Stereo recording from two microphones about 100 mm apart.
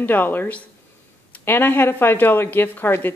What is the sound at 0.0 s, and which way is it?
A woman's voice, 20° left (ahead or behind).